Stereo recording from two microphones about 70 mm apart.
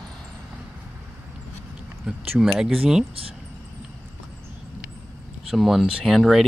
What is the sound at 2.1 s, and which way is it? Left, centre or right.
Speech, centre.